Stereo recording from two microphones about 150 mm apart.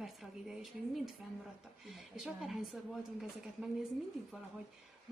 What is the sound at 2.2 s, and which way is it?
A woman's voice, 5° right (ahead or behind).